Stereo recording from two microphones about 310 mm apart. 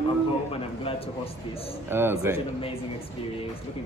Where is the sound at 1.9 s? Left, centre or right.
Centre.